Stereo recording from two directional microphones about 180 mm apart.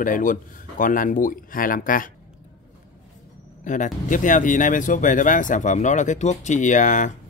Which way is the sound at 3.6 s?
45° left (ahead or behind).